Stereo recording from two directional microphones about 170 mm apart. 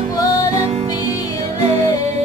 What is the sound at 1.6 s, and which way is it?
Music, 35° right (ahead or behind).